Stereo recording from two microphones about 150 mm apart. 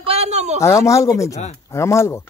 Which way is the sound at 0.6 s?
20° left (ahead or behind).